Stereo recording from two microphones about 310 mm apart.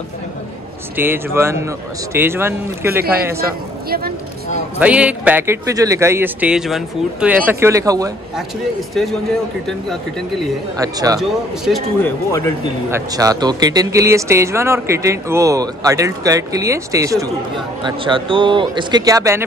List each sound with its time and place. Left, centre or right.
0.9 s speech: centre
3.0 s speech: right
4.7 s speech: centre
8.9 s speech: centre
10.8 s speech: centre
11.1 s speech: centre
12.9 s speech: centre